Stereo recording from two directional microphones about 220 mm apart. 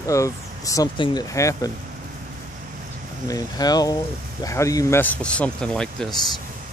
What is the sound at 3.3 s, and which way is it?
Speech, 15° left (ahead or behind).